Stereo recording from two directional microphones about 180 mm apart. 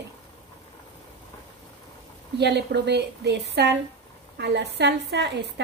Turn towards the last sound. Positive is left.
turn(degrees=-70)  # may be behind; listen again after turning